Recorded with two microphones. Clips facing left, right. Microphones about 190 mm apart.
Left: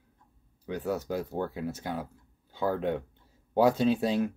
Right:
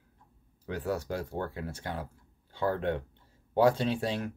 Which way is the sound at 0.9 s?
20° left (ahead or behind).